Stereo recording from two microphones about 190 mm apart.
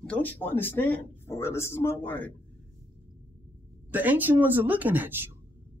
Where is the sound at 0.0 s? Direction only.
10° left (ahead or behind).